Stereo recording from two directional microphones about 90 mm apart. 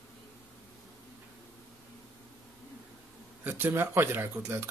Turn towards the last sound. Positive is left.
turn(degrees=-20)  # may be behind; listen again after turning